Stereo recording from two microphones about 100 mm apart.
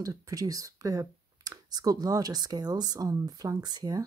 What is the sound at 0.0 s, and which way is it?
Speech, 35° right (ahead or behind).